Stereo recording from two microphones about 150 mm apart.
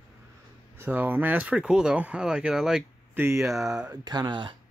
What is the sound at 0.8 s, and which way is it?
Speech, 10° right (ahead or behind).